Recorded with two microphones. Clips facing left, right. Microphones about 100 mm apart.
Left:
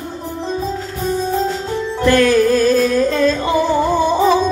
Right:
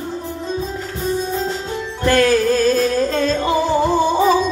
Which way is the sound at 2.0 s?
40° right (ahead or behind).